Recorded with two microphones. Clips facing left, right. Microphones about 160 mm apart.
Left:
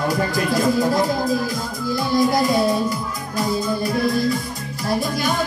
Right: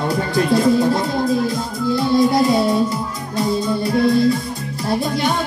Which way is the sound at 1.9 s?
30° right (ahead or behind).